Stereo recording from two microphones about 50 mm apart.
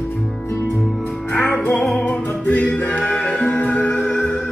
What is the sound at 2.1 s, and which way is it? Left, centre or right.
Music, left.